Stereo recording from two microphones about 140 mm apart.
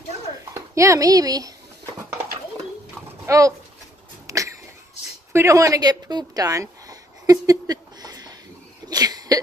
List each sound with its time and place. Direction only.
0.6 s a child's voice: 20° right (ahead or behind)
3.3 s speech: 25° right (ahead or behind)
4.3 s a sound: 25° right (ahead or behind)
8.8 s cough: 30° right (ahead or behind)